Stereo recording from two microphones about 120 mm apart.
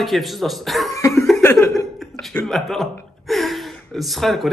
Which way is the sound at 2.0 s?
Centre (ahead or behind).